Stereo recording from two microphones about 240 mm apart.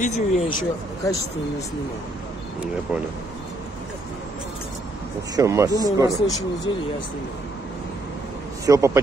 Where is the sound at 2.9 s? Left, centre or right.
Centre.